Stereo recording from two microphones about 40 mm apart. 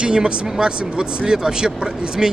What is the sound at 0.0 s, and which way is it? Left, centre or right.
Speech, right.